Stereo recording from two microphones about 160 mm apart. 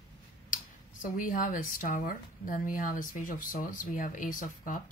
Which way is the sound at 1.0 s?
55° left (ahead or behind).